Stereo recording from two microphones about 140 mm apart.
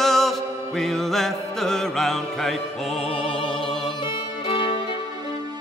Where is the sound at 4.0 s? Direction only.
35° left (ahead or behind).